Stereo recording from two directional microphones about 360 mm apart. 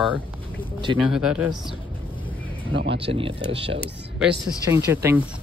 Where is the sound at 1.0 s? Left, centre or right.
Centre.